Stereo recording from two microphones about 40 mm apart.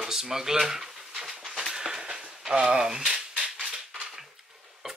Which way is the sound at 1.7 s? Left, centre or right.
Centre.